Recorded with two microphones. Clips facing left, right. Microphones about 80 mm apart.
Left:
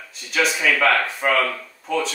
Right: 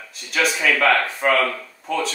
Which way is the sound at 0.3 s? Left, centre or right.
Centre.